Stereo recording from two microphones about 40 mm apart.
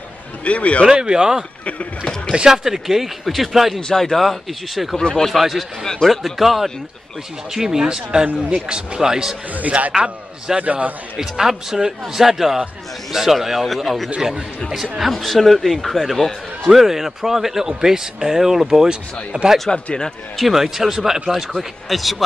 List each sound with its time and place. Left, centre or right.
0.5 s speech: left
0.9 s a man's voice: centre
3.9 s speech: centre
4.9 s speech: centre
5.3 s speech: centre
9.6 s speech: right
9.9 s a man's voice: centre
10.6 s speech: right
11.1 s speech: centre
20.3 s speech: centre